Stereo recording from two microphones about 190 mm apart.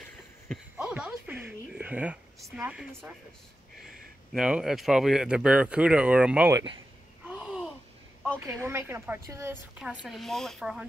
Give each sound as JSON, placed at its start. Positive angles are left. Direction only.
{"t": 0.7, "sound": "a sound", "side_deg": -5}
{"t": 3.8, "sound": "speech", "side_deg": 0}
{"t": 6.5, "sound": "speech", "side_deg": -25}
{"t": 7.2, "sound": "babbling", "side_deg": -5}
{"t": 8.2, "sound": "a woman's voice", "side_deg": -10}
{"t": 9.8, "sound": "speech", "side_deg": 0}